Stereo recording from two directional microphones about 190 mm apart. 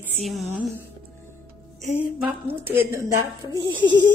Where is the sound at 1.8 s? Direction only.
10° right (ahead or behind).